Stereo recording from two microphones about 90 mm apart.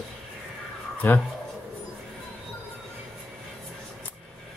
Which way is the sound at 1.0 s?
20° left (ahead or behind).